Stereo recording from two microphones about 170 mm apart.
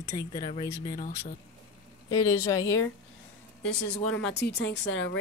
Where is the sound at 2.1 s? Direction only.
20° left (ahead or behind).